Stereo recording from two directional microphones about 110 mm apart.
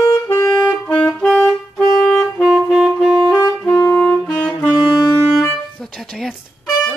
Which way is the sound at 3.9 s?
10° left (ahead or behind).